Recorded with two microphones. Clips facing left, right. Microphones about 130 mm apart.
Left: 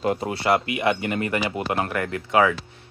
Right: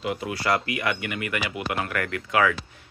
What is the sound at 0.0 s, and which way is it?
Speech, 40° left (ahead or behind).